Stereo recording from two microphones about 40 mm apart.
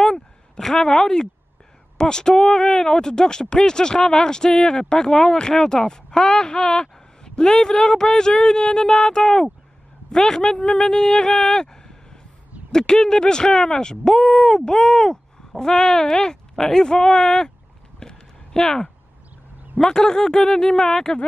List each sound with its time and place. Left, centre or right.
0.6 s speech: centre
17.9 s a sound: centre
19.8 s speech: centre